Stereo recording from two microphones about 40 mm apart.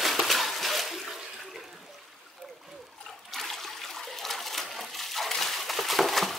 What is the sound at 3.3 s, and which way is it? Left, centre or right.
Toilet flush, centre.